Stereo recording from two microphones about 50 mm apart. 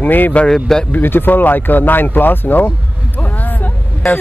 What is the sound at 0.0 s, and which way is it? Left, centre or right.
Speech, left.